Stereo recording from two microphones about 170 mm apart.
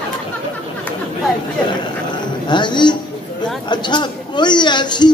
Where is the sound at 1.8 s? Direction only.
25° left (ahead or behind).